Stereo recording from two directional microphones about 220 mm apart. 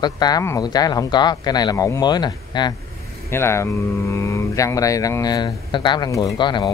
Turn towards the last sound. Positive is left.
turn(degrees=20)  # may be behind; listen again after turning